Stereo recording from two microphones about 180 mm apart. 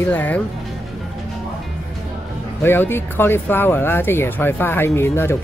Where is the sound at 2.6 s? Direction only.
10° left (ahead or behind).